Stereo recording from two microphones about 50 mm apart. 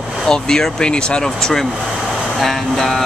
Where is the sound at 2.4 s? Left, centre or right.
Centre.